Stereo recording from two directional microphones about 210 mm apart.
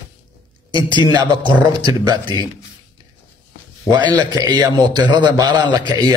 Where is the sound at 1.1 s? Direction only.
20° right (ahead or behind).